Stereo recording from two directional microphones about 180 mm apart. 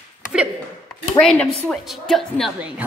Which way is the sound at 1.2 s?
5° left (ahead or behind).